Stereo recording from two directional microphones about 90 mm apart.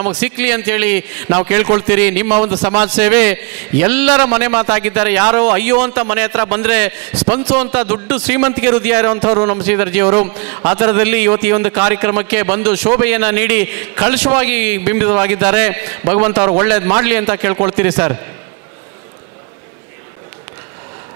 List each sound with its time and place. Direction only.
0.0 s a man's voice: 20° right (ahead or behind)